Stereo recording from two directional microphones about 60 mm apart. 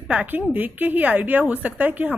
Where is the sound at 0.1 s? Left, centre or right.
Right.